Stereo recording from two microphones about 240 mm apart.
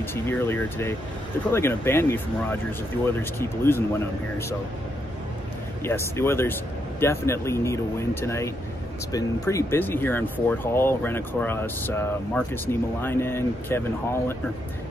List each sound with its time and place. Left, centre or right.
0.0 s speech: centre
5.9 s speech: centre